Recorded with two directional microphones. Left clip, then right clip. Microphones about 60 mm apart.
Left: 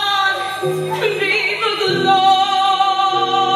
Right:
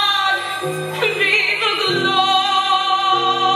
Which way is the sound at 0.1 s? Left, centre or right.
Right.